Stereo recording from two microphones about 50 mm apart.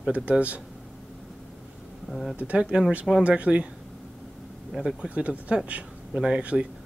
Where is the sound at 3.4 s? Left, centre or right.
Right.